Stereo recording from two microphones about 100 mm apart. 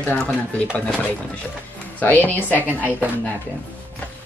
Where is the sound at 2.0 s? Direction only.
15° left (ahead or behind).